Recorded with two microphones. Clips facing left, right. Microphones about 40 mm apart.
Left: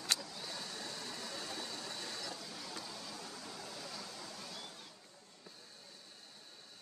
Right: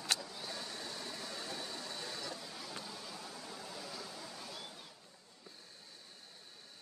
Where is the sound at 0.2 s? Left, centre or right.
Centre.